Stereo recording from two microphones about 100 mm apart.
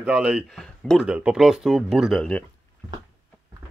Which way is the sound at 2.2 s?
15° left (ahead or behind).